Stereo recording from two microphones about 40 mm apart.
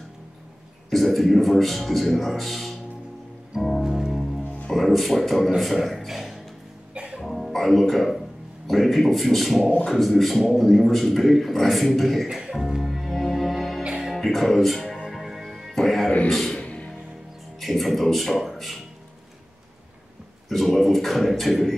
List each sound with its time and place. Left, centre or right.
0.8 s a man's voice: centre
3.8 s music: centre
4.1 s music: centre
4.7 s a man's voice: centre
6.9 s music: right
7.2 s a man's voice: centre
12.4 s music: centre
13.8 s music: centre
14.1 s speech: centre
15.0 s music: centre
16.3 s speech: centre
16.5 s music: left
17.6 s speech: centre
20.4 s a man's voice: centre